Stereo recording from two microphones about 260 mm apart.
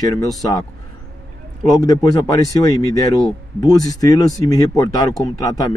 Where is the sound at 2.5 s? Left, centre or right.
Centre.